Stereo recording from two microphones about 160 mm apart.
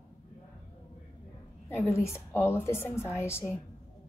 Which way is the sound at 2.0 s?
15° left (ahead or behind).